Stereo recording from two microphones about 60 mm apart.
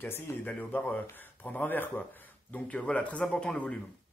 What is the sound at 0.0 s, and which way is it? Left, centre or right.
Speech, left.